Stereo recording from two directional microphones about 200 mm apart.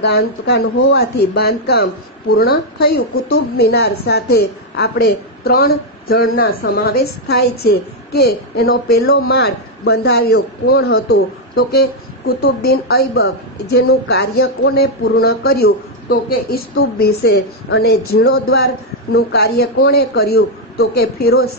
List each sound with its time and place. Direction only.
0.0 s a woman's voice: 50° left (ahead or behind)